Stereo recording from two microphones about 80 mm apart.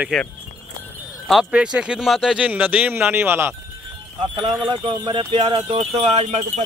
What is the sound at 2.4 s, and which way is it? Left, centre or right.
Speech, centre.